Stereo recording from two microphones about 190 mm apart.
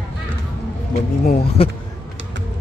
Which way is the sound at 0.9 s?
35° left (ahead or behind).